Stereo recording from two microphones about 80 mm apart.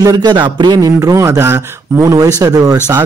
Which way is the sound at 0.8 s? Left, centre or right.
Right.